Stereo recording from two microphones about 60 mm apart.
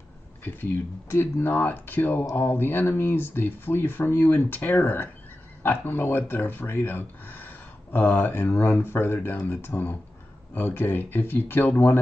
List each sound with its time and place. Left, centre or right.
0.4 s speech: left